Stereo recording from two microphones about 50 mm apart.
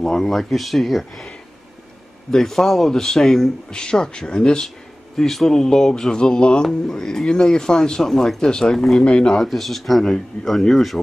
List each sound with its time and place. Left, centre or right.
0.0 s speech: centre
2.3 s speech: centre
8.0 s speech: centre
8.4 s speech: centre
8.7 s speech: centre
9.0 s speech: left
9.3 s speech: centre